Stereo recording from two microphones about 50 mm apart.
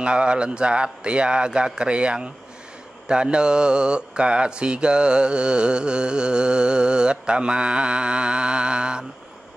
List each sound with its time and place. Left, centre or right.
0.0 s mantra: right